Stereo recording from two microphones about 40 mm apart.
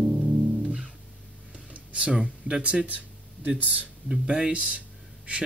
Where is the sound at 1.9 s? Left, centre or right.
Right.